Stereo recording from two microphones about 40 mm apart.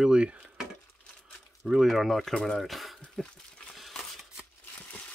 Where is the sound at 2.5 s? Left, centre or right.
Centre.